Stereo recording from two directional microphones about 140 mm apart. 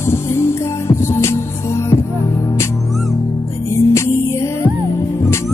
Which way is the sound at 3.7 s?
20° left (ahead or behind).